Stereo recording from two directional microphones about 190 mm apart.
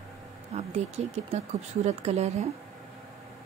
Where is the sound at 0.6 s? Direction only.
35° right (ahead or behind).